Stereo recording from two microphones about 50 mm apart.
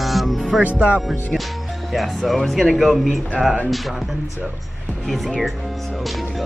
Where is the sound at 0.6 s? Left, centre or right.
Right.